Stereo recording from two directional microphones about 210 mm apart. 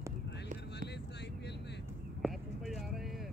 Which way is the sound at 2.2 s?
Centre (ahead or behind).